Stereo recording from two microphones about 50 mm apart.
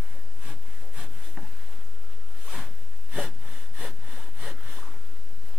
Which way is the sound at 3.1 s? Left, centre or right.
Right.